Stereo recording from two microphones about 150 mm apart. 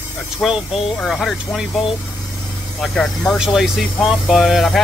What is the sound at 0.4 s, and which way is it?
Speech, centre (ahead or behind).